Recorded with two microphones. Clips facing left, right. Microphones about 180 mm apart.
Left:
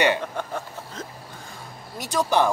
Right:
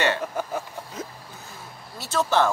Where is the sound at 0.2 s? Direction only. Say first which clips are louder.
Right 1 dB; 5° right (ahead or behind).